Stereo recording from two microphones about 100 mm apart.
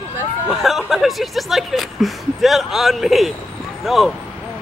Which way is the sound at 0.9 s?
Centre (ahead or behind).